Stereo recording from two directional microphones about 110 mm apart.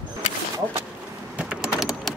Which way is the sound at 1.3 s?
10° right (ahead or behind).